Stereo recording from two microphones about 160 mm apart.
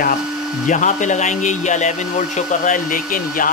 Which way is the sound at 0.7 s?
50° left (ahead or behind).